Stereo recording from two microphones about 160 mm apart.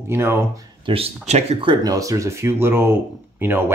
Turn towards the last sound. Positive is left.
turn(degrees=-10)  # may be behind; listen again after turning